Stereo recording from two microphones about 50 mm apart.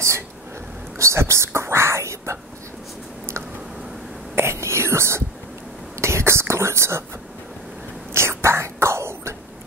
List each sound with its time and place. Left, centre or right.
0.9 s whispering: right
4.4 s whispering: right
8.1 s whispering: right